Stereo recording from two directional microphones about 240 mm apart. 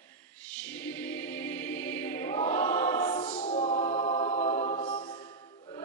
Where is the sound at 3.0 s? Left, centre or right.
Left.